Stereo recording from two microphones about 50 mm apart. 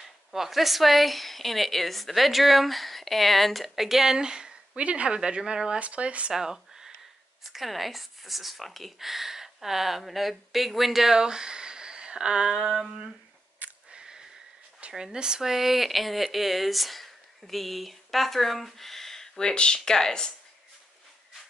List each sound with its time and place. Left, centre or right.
0.0 s a woman's voice: centre; by 6.3 s right
6.3 s a woman's voice: centre
12.7 s a sound: centre
13.6 s a sound: right
13.9 s sniff: centre
14.8 s speech: centre